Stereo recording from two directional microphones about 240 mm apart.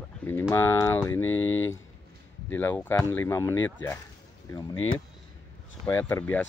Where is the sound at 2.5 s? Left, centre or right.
Centre.